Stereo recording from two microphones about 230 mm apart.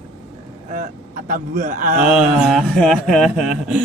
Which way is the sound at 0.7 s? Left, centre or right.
Right.